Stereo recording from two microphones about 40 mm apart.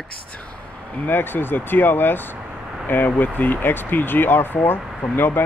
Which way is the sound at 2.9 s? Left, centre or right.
Left.